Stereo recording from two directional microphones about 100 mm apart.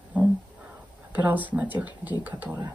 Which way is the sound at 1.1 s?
15° right (ahead or behind).